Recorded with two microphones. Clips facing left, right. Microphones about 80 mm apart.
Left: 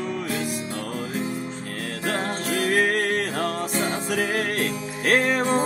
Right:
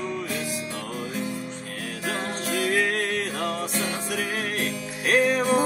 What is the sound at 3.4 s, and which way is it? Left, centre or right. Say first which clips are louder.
Music: left 3 dB; left.